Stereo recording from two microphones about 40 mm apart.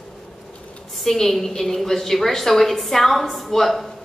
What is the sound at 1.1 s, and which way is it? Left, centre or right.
A woman's voice, centre.